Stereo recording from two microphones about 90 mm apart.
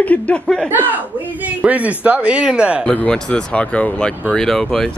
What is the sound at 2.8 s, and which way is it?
A woman's voice, 15° left (ahead or behind).